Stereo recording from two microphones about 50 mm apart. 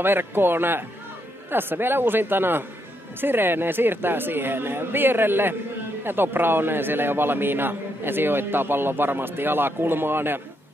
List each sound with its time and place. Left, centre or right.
0.0 s a man's voice: right